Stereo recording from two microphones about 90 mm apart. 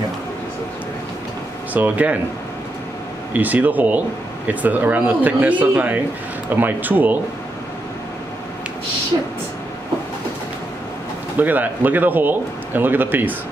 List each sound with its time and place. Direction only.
1.7 s speech: 20° right (ahead or behind)
3.3 s a man's voice: 20° right (ahead or behind)
11.3 s a man's voice: 20° right (ahead or behind)